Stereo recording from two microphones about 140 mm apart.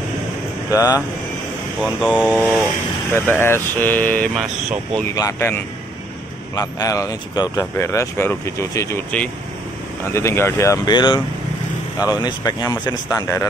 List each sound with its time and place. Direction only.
0.7 s speech: 25° left (ahead or behind)
1.8 s speech: 5° right (ahead or behind)
3.1 s speech: 15° left (ahead or behind)
4.4 s speech: 5° right (ahead or behind)
5.1 s speech: 20° left (ahead or behind)
10.1 s speech: 20° left (ahead or behind)
10.9 s speech: 30° left (ahead or behind)